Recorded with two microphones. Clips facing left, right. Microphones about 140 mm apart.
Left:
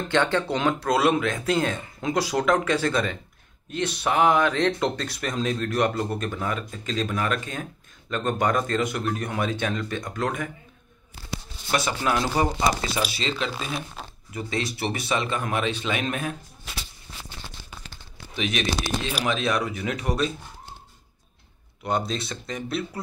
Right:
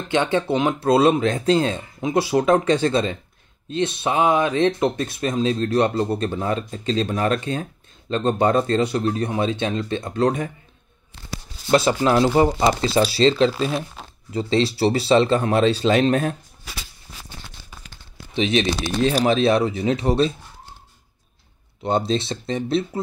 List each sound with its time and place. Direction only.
0.1 s speech: 15° right (ahead or behind)
0.8 s speech: 30° right (ahead or behind)
11.7 s speech: 30° right (ahead or behind)
18.3 s speech: 25° right (ahead or behind)
21.8 s speech: 25° right (ahead or behind)